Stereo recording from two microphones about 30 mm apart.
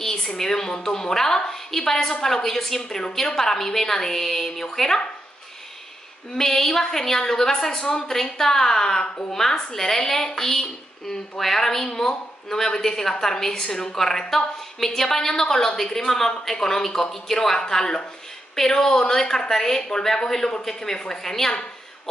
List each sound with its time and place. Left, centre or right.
0.0 s a sound: centre
0.4 s a woman's voice: centre
6.3 s a woman's voice: centre